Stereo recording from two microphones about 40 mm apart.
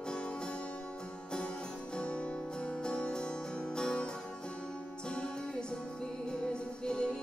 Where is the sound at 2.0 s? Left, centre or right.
Left.